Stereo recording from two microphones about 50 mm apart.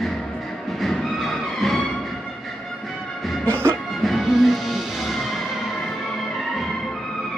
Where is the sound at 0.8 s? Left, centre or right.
Centre.